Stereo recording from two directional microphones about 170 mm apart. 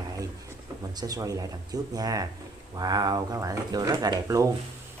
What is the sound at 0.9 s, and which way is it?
Speech, 20° right (ahead or behind).